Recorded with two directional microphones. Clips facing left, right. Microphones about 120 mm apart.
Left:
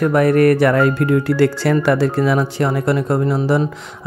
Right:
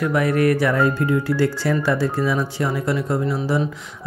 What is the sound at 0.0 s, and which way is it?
Speech, 55° left (ahead or behind).